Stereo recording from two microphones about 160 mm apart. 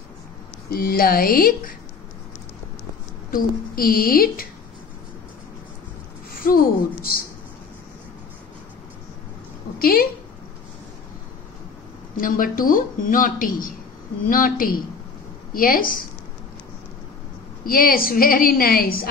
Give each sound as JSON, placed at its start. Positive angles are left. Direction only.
{"t": 0.7, "sound": "speech", "side_deg": 70}
{"t": 3.3, "sound": "speech", "side_deg": 65}
{"t": 6.3, "sound": "speech", "side_deg": 65}
{"t": 9.8, "sound": "a woman's voice", "side_deg": 65}
{"t": 12.2, "sound": "speech", "side_deg": 60}
{"t": 17.6, "sound": "speech", "side_deg": 65}